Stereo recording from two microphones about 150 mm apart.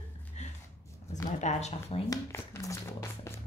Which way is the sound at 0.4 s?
50° left (ahead or behind).